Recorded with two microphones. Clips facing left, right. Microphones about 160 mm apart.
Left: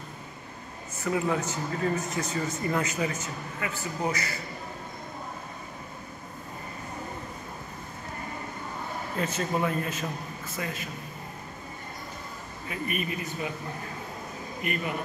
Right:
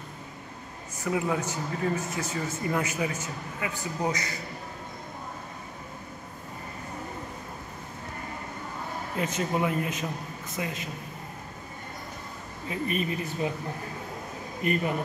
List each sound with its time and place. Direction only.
1.0 s speech: 10° right (ahead or behind)
9.1 s speech: 15° right (ahead or behind)
12.6 s speech: 30° right (ahead or behind)
14.6 s speech: 35° right (ahead or behind)